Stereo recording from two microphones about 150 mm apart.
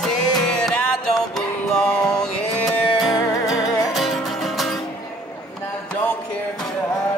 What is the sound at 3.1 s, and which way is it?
Music, 25° left (ahead or behind).